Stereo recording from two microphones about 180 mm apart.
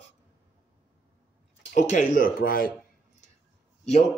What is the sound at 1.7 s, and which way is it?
Speech, 45° left (ahead or behind).